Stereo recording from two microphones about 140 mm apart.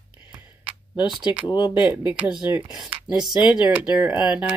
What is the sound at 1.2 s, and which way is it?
Speech, 35° left (ahead or behind).